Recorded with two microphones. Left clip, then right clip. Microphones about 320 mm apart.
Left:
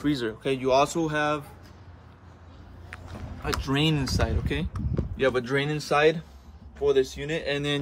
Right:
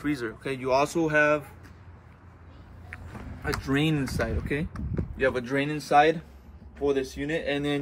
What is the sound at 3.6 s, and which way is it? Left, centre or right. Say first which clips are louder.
Speech: left 1 dB; centre.